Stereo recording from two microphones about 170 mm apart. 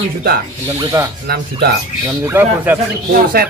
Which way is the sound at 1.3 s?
70° right (ahead or behind).